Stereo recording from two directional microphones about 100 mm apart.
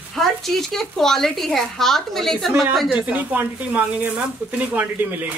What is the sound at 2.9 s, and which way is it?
Speech, 15° right (ahead or behind).